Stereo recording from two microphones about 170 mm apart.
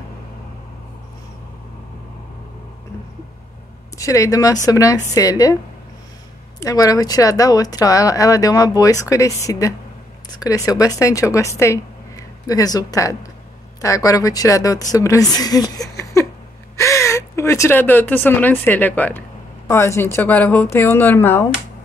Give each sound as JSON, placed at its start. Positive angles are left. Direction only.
{"t": 4.0, "sound": "speech", "side_deg": 20}
{"t": 6.6, "sound": "speech", "side_deg": 20}
{"t": 16.0, "sound": "a sound", "side_deg": 15}
{"t": 16.7, "sound": "speech", "side_deg": 15}